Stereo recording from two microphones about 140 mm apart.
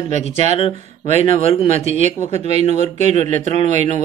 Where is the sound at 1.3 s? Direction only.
45° left (ahead or behind).